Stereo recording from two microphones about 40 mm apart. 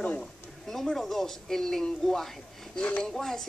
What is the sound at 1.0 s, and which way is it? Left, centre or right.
Speech, centre.